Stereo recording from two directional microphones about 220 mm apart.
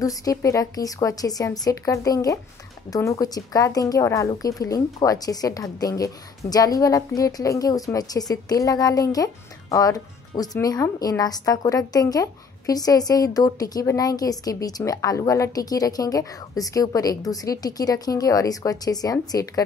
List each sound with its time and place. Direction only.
0.0 s speech: 15° left (ahead or behind)